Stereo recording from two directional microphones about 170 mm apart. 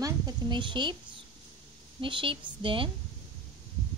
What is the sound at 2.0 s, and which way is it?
Speech, 30° right (ahead or behind).